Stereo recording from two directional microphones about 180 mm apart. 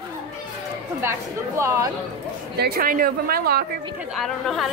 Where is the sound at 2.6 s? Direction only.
55° right (ahead or behind).